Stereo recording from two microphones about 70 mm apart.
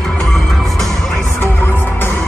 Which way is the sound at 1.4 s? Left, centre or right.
Left.